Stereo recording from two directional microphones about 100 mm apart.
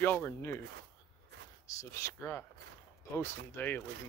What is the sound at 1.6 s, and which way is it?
Speech, 30° left (ahead or behind).